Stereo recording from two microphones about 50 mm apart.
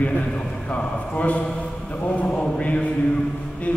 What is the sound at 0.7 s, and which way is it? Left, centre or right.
A man's voice, left.